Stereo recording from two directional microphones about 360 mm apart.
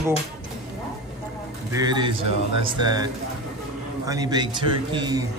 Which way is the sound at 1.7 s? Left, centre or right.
Centre.